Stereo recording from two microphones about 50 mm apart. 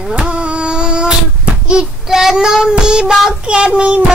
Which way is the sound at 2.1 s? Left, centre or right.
Centre.